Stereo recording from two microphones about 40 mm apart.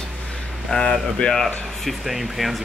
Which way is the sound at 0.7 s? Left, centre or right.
Left.